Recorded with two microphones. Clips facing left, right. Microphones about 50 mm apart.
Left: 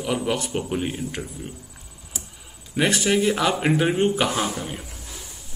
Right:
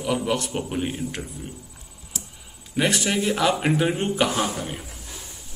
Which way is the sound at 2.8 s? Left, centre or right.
Centre.